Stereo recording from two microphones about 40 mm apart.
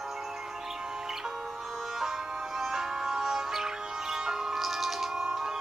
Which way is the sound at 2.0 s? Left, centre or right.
Centre.